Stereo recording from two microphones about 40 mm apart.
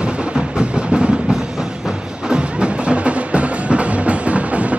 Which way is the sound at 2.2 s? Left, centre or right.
Right.